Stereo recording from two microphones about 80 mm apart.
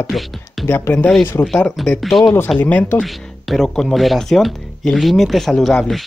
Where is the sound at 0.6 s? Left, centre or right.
Left.